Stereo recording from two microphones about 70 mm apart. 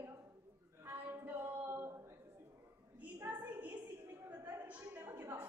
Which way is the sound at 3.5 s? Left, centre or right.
Right.